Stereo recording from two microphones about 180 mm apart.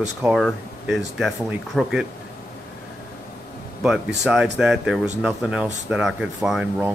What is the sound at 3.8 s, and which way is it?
Speech, 5° right (ahead or behind).